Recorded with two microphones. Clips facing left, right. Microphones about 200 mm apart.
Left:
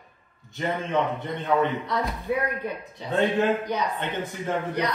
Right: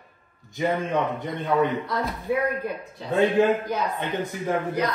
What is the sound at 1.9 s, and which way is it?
A woman's voice, centre (ahead or behind).